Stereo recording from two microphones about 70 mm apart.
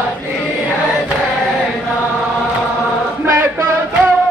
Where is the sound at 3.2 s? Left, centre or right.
Right.